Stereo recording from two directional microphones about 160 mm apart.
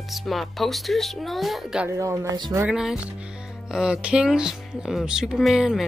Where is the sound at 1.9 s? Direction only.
20° right (ahead or behind).